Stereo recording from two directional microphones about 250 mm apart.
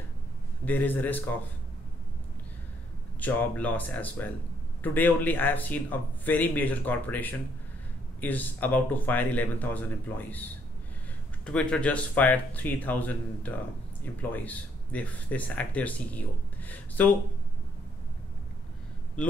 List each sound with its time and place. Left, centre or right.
0.7 s speech: centre
3.2 s speech: centre
11.4 s speech: centre